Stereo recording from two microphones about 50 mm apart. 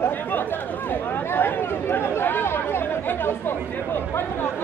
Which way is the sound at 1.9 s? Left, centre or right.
Left.